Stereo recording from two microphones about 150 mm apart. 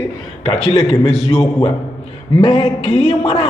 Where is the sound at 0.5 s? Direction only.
40° left (ahead or behind).